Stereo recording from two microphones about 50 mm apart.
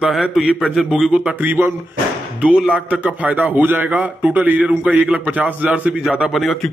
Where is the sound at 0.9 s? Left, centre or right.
Centre.